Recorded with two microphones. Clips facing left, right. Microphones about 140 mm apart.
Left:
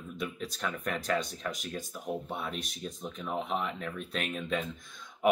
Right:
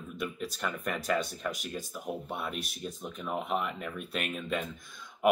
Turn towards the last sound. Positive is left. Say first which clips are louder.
# even
turn(degrees=-5)  # may be behind; listen again after turning